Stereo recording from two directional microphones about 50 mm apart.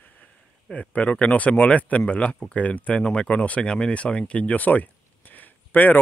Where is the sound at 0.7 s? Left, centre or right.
Left.